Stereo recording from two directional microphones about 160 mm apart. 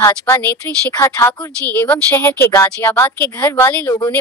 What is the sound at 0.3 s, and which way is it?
A woman's voice, 15° left (ahead or behind).